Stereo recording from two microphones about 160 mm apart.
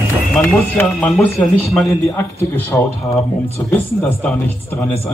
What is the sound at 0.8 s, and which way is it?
Speech, 10° left (ahead or behind).